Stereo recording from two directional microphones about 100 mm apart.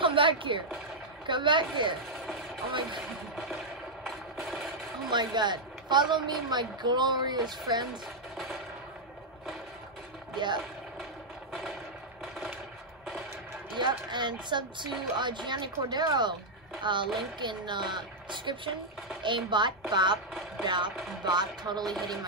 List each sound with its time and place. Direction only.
0.0 s a sound: 60° right (ahead or behind)
1.2 s speech: 55° right (ahead or behind)
2.1 s vehicle: centre (ahead or behind)
4.0 s vehicle: centre (ahead or behind)
5.1 s speech: 45° right (ahead or behind)
10.3 s speech: 50° right (ahead or behind)
13.7 s speech: 50° right (ahead or behind)
21.8 s speech: centre (ahead or behind)